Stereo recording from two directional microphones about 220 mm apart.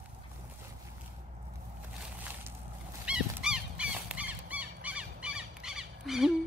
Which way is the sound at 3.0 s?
5° right (ahead or behind).